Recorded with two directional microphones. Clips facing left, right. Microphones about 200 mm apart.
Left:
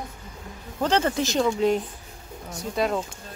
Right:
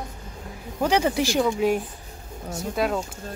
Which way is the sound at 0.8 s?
10° right (ahead or behind).